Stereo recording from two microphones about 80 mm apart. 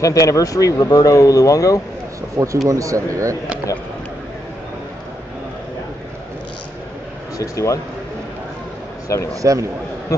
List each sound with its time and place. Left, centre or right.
0.0 s speech: left
2.3 s a man's voice: right
7.3 s speech: left
9.3 s speech: right